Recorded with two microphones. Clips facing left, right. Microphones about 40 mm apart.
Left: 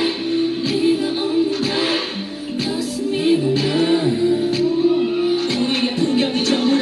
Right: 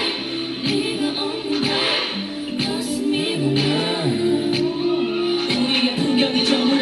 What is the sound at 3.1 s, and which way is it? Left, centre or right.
Music, right.